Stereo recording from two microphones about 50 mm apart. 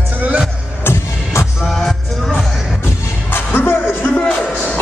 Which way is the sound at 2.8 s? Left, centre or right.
Left.